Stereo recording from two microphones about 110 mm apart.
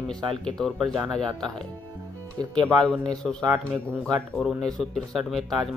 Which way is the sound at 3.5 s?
20° right (ahead or behind).